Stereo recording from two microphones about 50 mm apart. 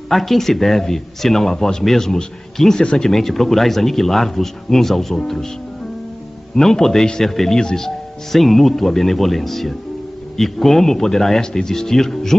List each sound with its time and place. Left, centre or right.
0.1 s speech: centre
6.5 s speech: centre